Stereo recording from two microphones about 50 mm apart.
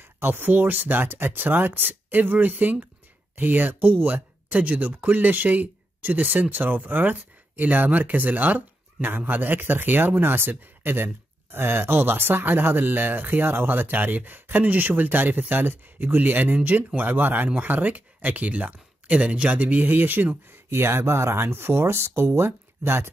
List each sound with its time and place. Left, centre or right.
0.2 s speech: right
20.7 s speech: right